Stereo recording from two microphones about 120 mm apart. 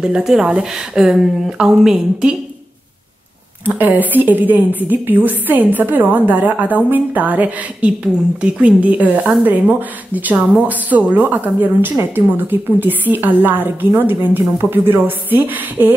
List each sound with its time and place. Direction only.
0.0 s a woman's voice: 5° right (ahead or behind)
3.6 s speech: 15° right (ahead or behind)